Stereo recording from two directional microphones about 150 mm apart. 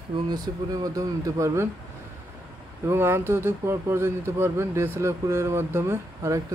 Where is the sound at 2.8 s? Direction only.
15° right (ahead or behind).